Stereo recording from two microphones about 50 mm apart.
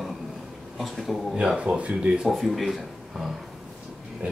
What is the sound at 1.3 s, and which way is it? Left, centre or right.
Speech, centre.